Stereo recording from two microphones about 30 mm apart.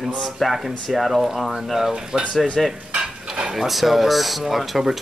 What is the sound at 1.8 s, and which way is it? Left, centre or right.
Speech, right.